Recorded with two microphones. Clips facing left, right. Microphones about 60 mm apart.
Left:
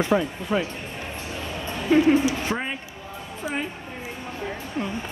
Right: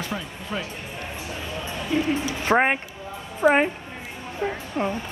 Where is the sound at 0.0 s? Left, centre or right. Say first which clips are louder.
Left 9 dB; left.